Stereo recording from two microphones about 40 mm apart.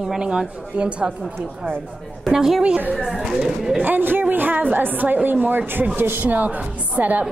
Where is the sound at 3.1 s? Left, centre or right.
Centre.